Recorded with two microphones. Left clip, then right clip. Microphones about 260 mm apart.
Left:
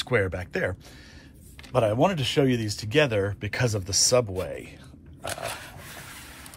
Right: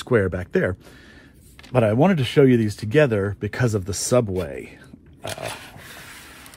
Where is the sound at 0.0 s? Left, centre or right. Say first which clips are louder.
Right 4 dB; right.